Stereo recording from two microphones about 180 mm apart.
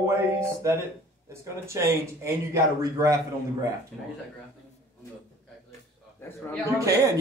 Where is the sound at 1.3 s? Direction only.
15° right (ahead or behind).